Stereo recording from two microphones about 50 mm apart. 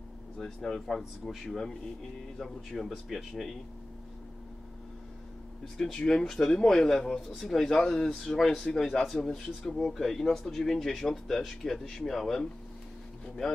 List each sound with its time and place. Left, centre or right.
0.4 s a man's voice: centre
5.8 s a man's voice: centre